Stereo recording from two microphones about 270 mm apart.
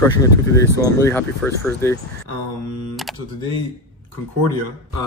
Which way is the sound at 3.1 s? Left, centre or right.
Centre.